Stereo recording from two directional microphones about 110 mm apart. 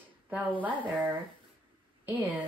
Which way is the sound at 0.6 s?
15° right (ahead or behind).